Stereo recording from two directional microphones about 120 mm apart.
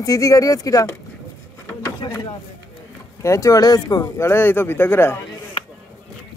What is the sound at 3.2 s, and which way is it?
Speech, 25° left (ahead or behind).